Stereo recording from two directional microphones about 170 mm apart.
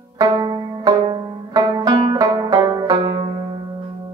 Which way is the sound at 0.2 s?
25° right (ahead or behind).